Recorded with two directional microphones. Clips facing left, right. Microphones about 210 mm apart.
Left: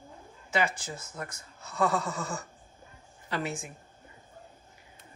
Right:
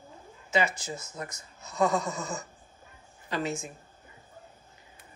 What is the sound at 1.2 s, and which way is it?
Speech, 20° right (ahead or behind).